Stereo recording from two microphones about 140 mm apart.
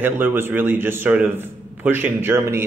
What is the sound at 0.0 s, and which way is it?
Speech, 15° right (ahead or behind).